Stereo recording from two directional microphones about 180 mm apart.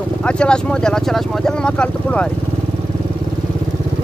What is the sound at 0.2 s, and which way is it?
Speech, 5° left (ahead or behind).